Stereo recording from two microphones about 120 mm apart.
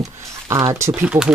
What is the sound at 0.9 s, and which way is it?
Speech, 10° right (ahead or behind).